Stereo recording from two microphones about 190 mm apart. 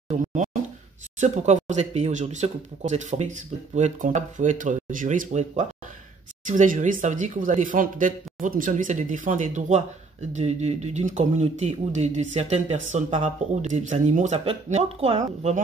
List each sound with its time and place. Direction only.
0.1 s speech: 35° right (ahead or behind)